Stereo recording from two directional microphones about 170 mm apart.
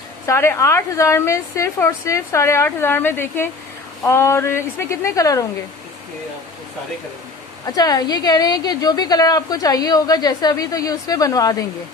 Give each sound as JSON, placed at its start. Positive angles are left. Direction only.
{"t": 0.3, "sound": "a woman's voice", "side_deg": 15}
{"t": 7.6, "sound": "a woman's voice", "side_deg": 20}